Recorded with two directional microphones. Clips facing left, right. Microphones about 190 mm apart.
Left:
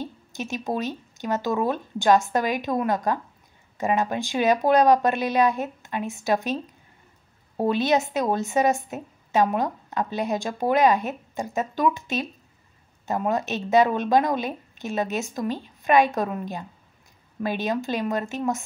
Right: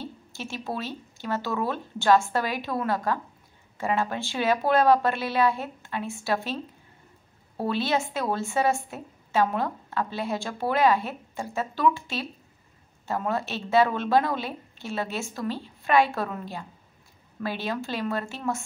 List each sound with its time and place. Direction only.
0.0 s speech: 15° left (ahead or behind)